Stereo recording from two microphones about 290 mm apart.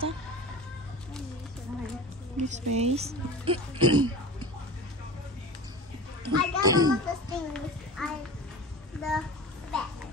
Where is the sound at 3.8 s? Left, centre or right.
Right.